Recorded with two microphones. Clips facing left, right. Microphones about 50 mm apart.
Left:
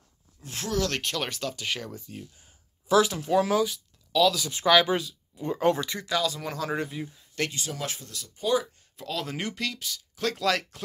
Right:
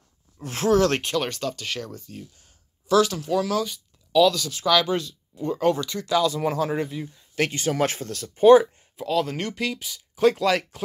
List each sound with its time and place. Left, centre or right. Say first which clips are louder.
0.5 s speech: right 9 dB; right
1.0 s speech: right 5 dB; centre; by 3.6 s left
3.6 s a sound: left 3 dB; centre
4.5 s speech: even; left
6.0 s speech: right 7 dB; centre
6.4 s speech: right 8 dB; centre
6.7 s speech: right 3 dB; centre
7.7 s speech: right 11 dB; right
8.9 s speech: right 8 dB; centre
9.6 s speech: right 4 dB; centre